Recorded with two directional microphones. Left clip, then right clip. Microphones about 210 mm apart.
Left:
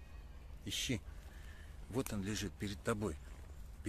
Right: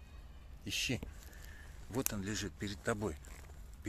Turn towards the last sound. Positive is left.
turn(degrees=0)  # may be behind; listen again after turning